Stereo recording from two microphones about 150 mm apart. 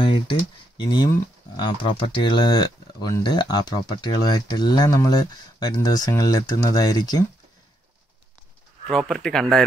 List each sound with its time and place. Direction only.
0.0 s speech: 35° left (ahead or behind)
8.9 s speech: 5° left (ahead or behind)